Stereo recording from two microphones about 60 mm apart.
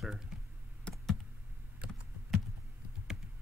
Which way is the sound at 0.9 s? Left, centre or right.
Centre.